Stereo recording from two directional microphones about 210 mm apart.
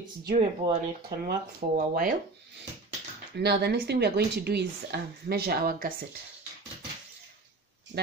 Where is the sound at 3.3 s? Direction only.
50° right (ahead or behind).